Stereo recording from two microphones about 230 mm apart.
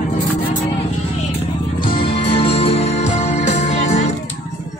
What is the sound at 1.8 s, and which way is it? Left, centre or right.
Music, left.